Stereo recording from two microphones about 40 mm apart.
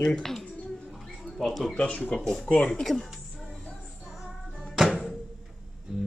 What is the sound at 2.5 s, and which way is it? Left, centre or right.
Speech, left.